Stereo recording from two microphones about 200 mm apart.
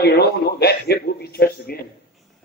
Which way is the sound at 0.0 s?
55° left (ahead or behind).